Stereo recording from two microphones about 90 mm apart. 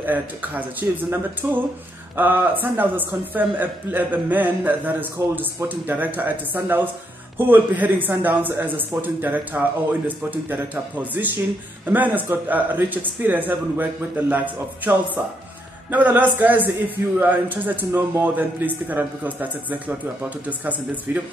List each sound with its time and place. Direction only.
0.0 s a man's voice: 20° right (ahead or behind)